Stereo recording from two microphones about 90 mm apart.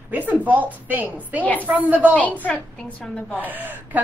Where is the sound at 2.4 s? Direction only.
15° left (ahead or behind).